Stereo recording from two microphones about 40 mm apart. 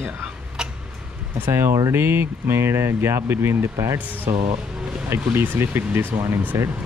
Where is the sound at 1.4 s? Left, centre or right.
Right.